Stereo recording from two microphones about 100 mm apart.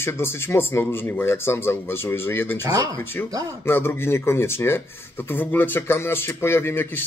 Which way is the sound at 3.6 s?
25° left (ahead or behind).